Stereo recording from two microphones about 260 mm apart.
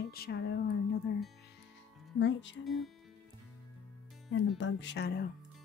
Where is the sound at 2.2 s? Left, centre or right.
Left.